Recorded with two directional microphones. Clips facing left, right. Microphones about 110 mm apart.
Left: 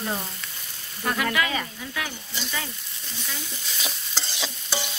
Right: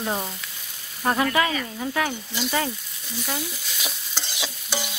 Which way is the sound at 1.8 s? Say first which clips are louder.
Right 7 dB; 45° right (ahead or behind).